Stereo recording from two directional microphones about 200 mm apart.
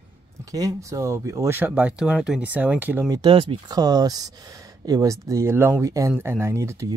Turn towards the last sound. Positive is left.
turn(degrees=-15)  # may be behind; listen again after turning